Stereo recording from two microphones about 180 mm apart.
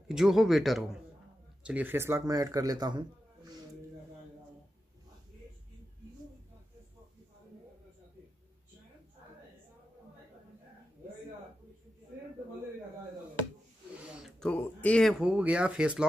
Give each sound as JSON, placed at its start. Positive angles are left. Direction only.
{"t": 0.1, "sound": "a man's voice", "side_deg": 0}
{"t": 14.0, "sound": "a sound", "side_deg": -5}
{"t": 14.5, "sound": "speech", "side_deg": 10}